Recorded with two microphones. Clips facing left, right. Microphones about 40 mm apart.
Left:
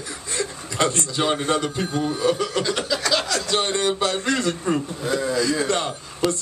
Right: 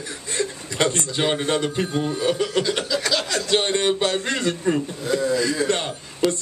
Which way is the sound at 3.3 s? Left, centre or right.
Right.